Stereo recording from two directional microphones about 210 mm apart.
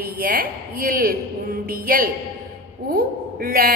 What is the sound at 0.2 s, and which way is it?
A woman's voice, 45° right (ahead or behind).